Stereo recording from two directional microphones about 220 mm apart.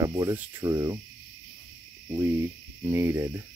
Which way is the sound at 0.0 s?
15° right (ahead or behind).